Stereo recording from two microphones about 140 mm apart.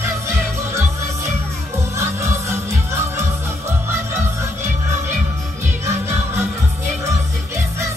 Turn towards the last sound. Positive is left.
turn(degrees=-20)  # may be behind; listen again after turning